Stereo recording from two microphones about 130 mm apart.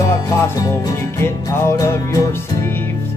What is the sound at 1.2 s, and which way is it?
Music, 25° left (ahead or behind).